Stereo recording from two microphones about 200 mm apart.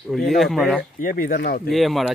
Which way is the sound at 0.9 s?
45° left (ahead or behind).